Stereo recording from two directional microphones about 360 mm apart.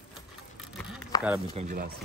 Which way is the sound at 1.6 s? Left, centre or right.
Right.